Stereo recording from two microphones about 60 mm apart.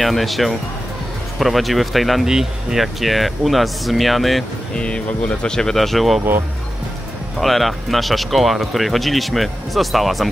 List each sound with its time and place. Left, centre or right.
0.0 s speech: centre
4.7 s speech: centre
7.3 s speech: centre